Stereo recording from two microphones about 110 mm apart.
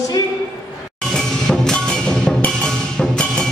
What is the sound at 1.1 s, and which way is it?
Music, 5° left (ahead or behind).